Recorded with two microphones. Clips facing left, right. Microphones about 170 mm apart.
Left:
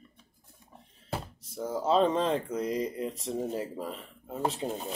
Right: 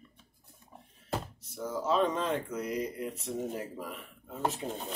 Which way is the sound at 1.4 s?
30° left (ahead or behind).